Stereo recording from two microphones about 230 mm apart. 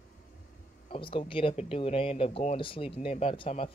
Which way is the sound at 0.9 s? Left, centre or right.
Left.